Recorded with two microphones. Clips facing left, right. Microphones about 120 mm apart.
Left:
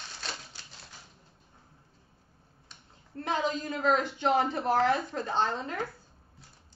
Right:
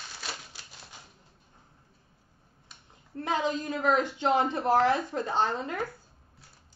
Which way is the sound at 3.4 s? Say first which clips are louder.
Right 1 dB; 15° right (ahead or behind).